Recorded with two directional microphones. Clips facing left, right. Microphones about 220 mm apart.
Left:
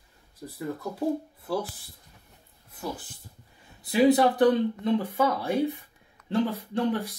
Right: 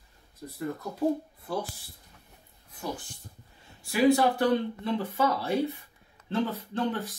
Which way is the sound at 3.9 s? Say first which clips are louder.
Left 2 dB; 20° left (ahead or behind).